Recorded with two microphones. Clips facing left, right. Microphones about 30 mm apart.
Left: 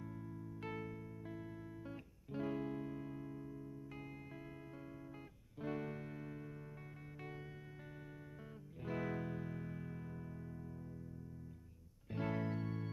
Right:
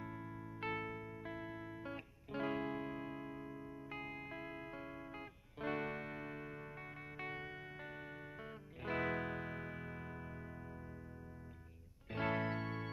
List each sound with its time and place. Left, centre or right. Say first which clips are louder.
0.0 s music: right 2 dB; right
5.6 s music: right 3 dB; right
8.8 s music: right 3 dB; right
12.1 s music: right 3 dB; right